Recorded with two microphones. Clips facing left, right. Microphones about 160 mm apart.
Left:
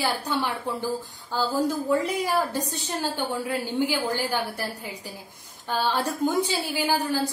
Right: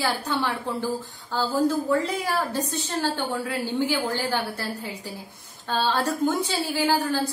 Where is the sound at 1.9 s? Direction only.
15° left (ahead or behind).